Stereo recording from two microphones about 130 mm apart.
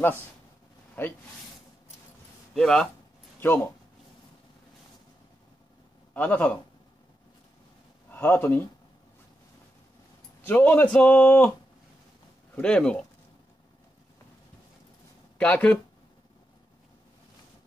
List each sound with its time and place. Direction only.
1.0 s speech: 15° left (ahead or behind)
2.5 s speech: 5° left (ahead or behind)
3.3 s speech: 15° left (ahead or behind)
6.1 s a man's voice: 10° left (ahead or behind)
8.1 s speech: 15° left (ahead or behind)
10.4 s a man's voice: 15° left (ahead or behind)
12.5 s a man's voice: 10° left (ahead or behind)
15.3 s speech: 10° left (ahead or behind)